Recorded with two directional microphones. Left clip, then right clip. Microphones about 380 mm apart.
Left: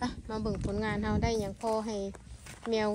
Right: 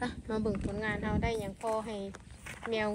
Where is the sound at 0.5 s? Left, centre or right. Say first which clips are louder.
Left 1 dB; centre.